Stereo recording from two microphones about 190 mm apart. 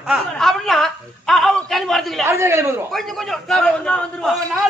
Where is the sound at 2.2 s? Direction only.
15° right (ahead or behind).